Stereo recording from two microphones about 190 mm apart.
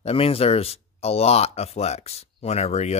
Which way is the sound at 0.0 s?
30° left (ahead or behind).